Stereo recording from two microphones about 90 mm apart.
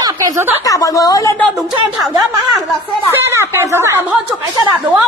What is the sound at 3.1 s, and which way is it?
Speech, 30° right (ahead or behind).